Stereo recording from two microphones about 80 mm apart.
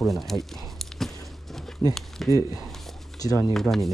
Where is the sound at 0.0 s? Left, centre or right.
Centre.